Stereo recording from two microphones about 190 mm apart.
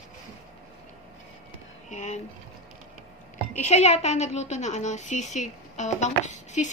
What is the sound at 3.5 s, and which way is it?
Speech, 35° left (ahead or behind).